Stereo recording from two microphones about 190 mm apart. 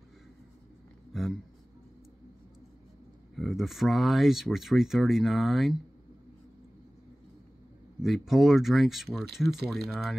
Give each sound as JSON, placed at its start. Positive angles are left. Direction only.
{"t": 1.1, "sound": "a sound", "side_deg": 0}
{"t": 3.3, "sound": "speech", "side_deg": 0}
{"t": 8.0, "sound": "speech", "side_deg": 0}